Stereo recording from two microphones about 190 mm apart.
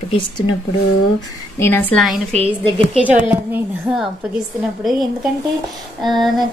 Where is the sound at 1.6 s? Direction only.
10° left (ahead or behind).